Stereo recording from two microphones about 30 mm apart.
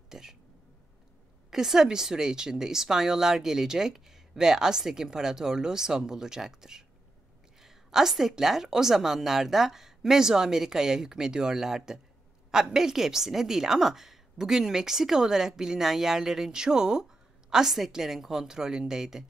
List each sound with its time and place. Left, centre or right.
0.1 s a sound: centre
1.5 s a woman's voice: centre
17.6 s a woman's voice: centre